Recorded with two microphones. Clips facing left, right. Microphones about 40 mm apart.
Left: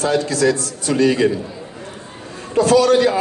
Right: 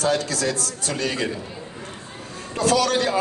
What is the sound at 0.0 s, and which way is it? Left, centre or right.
A man's voice, left.